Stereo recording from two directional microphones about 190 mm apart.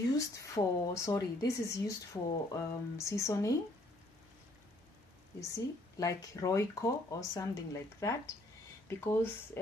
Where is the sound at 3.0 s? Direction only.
15° left (ahead or behind).